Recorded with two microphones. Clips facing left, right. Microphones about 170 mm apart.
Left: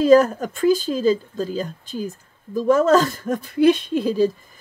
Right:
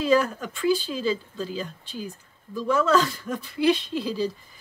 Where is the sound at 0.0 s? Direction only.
45° left (ahead or behind).